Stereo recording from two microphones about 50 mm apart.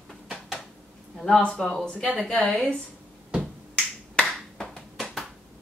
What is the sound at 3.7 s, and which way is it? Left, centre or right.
Finger snapping, centre.